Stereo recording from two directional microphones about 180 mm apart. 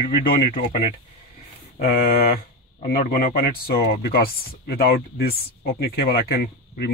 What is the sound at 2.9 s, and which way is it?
Speech, 55° left (ahead or behind).